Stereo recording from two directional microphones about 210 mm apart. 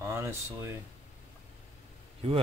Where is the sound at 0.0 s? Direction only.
15° right (ahead or behind).